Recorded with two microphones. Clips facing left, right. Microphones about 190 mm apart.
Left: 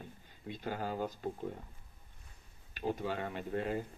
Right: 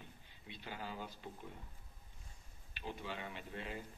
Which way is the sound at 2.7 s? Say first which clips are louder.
Left 10 dB; 45° left (ahead or behind).